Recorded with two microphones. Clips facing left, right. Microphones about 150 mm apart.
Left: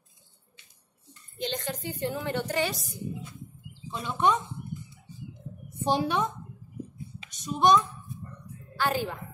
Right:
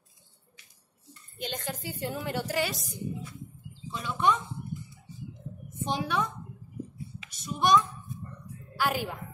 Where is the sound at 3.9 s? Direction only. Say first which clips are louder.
Left 2 dB; 20° left (ahead or behind).